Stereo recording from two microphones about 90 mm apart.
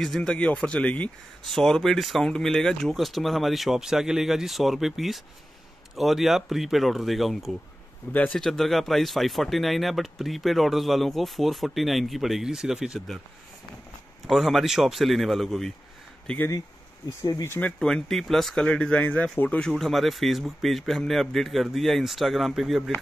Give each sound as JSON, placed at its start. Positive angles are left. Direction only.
{"t": 0.0, "sound": "speech", "side_deg": 5}
{"t": 1.4, "sound": "speech", "side_deg": 5}
{"t": 8.1, "sound": "speech", "side_deg": 15}
{"t": 14.2, "sound": "speech", "side_deg": 0}
{"t": 17.2, "sound": "speech", "side_deg": 45}
{"t": 17.5, "sound": "speech", "side_deg": 20}
{"t": 17.7, "sound": "speech", "side_deg": 5}
{"t": 19.8, "sound": "speech", "side_deg": 0}